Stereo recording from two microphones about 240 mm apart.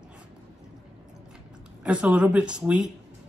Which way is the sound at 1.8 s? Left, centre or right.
Centre.